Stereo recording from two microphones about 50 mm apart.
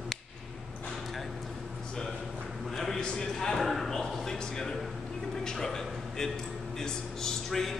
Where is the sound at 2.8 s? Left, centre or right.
Centre.